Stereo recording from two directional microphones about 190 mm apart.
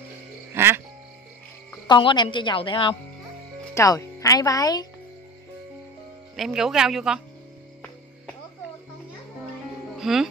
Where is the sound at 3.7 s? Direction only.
15° left (ahead or behind).